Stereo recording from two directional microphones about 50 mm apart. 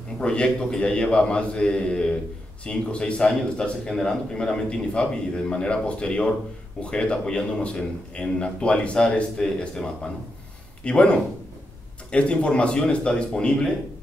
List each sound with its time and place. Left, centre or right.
0.2 s a man's voice: centre